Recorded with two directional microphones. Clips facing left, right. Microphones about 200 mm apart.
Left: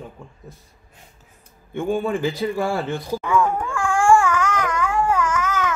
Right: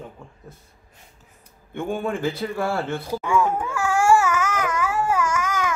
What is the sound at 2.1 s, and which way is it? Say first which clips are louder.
A man's voice: left 3 dB; 10° left (ahead or behind).